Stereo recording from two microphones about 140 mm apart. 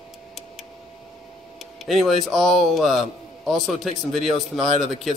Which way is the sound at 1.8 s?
Centre (ahead or behind).